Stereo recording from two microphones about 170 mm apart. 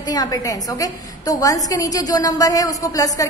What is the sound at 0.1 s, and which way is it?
A woman's voice, 20° left (ahead or behind).